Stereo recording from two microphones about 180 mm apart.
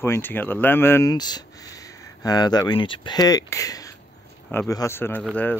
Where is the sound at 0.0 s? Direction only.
10° left (ahead or behind).